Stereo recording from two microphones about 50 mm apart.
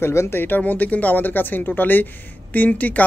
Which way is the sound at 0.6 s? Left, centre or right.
Left.